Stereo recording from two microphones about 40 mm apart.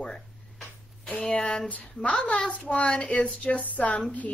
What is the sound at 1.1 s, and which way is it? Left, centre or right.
Speech, left.